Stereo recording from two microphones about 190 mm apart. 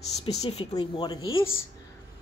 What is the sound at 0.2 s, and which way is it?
Speech, 30° left (ahead or behind).